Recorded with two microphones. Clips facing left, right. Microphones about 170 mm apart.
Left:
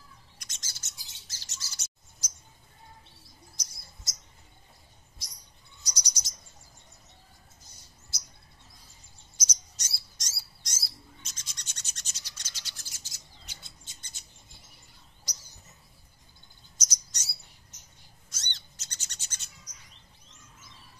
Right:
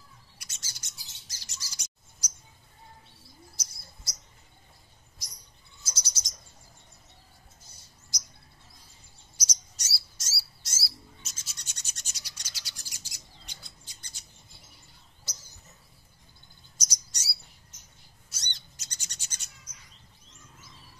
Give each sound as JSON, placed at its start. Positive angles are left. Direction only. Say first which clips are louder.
{"t": 0.4, "sound": "bird", "louder": "even", "side_deg": -10}
{"t": 5.9, "sound": "cricket", "louder": "even", "side_deg": 15}
{"t": 8.1, "sound": "bird", "louder": "right 2 dB", "side_deg": -15}
{"t": 9.4, "sound": "bird", "louder": "even", "side_deg": -10}
{"t": 13.6, "sound": "bird", "louder": "even", "side_deg": 25}
{"t": 16.7, "sound": "chirp", "louder": "even", "side_deg": -10}
{"t": 18.3, "sound": "bird", "louder": "even", "side_deg": -10}